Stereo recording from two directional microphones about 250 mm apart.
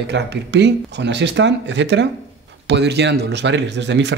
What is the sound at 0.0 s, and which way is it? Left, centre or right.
Speech, right.